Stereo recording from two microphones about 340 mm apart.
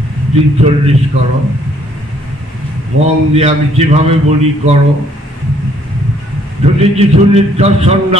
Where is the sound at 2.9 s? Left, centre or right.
Right.